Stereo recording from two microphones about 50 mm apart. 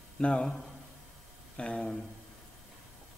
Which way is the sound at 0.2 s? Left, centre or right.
Left.